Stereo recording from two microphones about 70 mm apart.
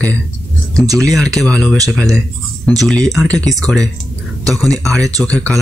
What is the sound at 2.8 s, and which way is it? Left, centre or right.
Speech, centre.